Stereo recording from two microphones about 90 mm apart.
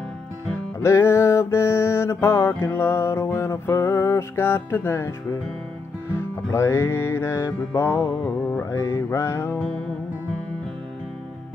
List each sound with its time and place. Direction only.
0.5 s music: 30° left (ahead or behind)
8.4 s music: 15° left (ahead or behind)
8.7 s music: 30° left (ahead or behind)